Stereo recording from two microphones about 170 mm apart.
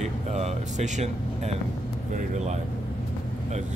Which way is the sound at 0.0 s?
40° right (ahead or behind).